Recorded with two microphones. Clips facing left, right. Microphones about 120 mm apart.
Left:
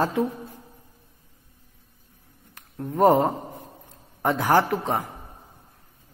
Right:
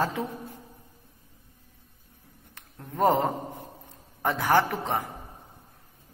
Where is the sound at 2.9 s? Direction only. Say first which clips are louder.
Left 5 dB; 20° left (ahead or behind).